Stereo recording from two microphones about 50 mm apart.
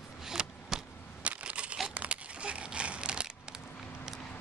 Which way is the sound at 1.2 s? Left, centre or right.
Right.